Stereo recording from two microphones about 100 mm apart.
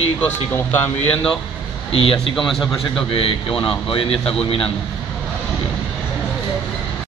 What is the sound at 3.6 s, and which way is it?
Speech, 65° left (ahead or behind).